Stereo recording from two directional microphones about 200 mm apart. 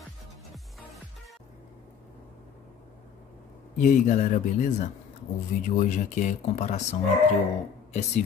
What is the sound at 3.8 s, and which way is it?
Speech, 40° left (ahead or behind).